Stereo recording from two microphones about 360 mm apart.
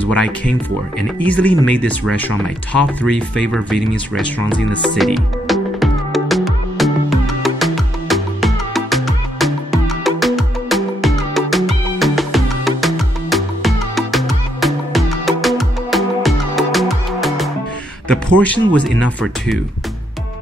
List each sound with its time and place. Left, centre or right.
0.0 s speech: centre
4.5 s music: centre
18.0 s a man's voice: centre